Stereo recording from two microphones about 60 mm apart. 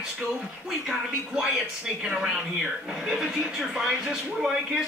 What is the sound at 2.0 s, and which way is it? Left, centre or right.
Speech, centre.